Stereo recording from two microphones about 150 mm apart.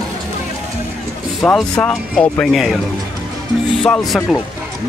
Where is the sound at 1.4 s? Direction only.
5° left (ahead or behind).